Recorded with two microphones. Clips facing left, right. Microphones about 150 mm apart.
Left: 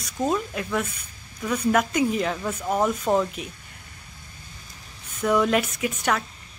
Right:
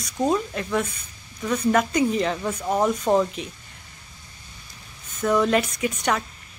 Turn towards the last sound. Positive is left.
turn(degrees=0)  # may be behind; listen again after turning